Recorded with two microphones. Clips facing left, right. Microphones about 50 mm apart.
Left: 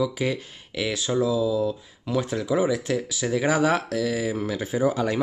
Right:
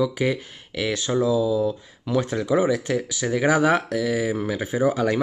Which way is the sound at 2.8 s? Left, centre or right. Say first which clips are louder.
Right 1 dB; centre.